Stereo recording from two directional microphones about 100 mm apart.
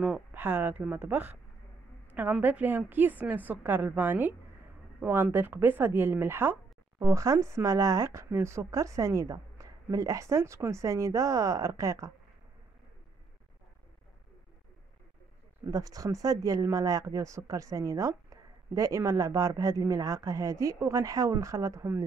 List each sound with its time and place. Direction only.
0.0 s a woman's voice: 15° right (ahead or behind)
2.4 s a woman's voice: 15° right (ahead or behind)
15.6 s speech: 35° right (ahead or behind)